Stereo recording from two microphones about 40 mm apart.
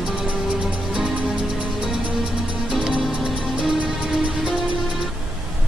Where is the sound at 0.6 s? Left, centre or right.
Centre.